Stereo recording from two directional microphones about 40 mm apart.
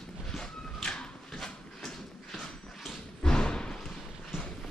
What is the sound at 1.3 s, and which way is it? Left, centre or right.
Horse, centre.